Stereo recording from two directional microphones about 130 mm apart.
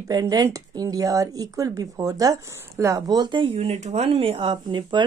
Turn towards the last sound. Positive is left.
turn(degrees=-35)  # may be behind; listen again after turning